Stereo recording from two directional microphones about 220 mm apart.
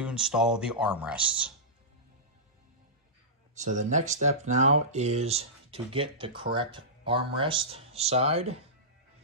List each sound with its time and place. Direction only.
0.0 s speech: 5° right (ahead or behind)
3.5 s speech: 35° right (ahead or behind)